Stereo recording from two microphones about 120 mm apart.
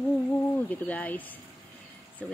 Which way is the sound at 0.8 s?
15° left (ahead or behind).